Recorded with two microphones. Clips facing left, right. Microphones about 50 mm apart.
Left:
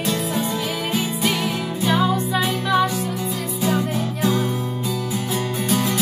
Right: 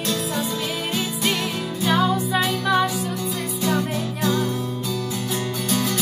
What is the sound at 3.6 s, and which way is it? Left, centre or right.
Music, centre.